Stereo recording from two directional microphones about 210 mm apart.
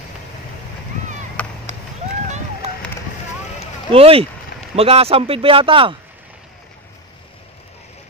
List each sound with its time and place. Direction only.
1.4 s chop: 5° left (ahead or behind)
2.2 s a sound: 35° right (ahead or behind)
3.9 s speech: 25° right (ahead or behind)